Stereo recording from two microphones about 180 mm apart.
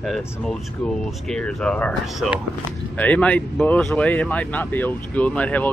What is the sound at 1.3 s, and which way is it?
Speech, 5° left (ahead or behind).